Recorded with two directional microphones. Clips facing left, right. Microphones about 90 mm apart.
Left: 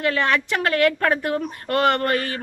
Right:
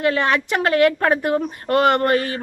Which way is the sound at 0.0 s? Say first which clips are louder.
Right 2 dB; 20° right (ahead or behind).